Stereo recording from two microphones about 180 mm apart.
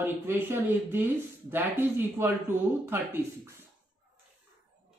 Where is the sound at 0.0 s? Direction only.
10° right (ahead or behind).